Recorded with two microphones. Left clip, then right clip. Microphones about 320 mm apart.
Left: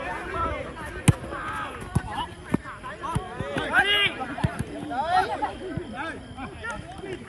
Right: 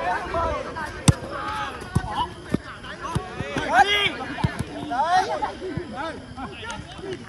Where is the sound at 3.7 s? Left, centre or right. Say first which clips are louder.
Right 3 dB; right.